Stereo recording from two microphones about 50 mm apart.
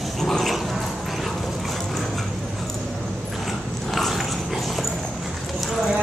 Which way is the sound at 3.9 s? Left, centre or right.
Centre.